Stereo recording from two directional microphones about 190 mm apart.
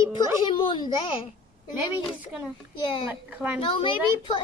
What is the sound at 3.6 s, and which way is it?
Speech, 30° left (ahead or behind).